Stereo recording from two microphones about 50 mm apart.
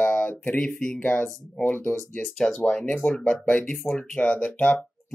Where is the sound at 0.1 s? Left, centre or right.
Left.